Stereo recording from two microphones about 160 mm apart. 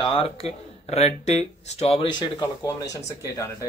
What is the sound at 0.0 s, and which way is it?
Speech, 35° left (ahead or behind).